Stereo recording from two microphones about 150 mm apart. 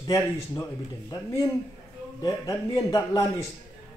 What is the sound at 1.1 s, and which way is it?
A man's voice, 20° left (ahead or behind).